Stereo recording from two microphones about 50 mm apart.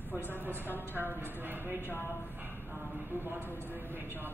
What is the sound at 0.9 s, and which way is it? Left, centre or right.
Speech, right.